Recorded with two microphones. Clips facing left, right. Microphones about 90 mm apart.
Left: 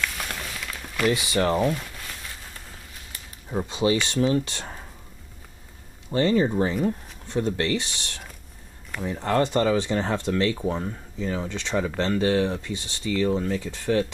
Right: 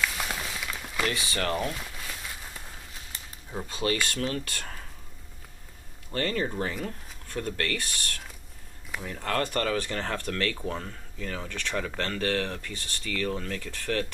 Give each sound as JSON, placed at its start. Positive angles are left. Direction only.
{"t": 0.0, "sound": "a sound", "side_deg": -5}
{"t": 1.0, "sound": "speech", "side_deg": 20}
{"t": 1.6, "sound": "crumpling", "side_deg": 0}
{"t": 3.4, "sound": "speech", "side_deg": 20}
{"t": 6.1, "sound": "speech", "side_deg": 20}